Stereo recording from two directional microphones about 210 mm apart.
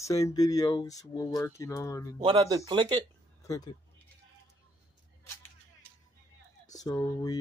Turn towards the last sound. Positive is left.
turn(degrees=15)  # may be behind; listen again after turning